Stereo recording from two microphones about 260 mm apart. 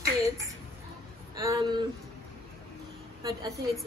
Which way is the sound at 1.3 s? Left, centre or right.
Centre.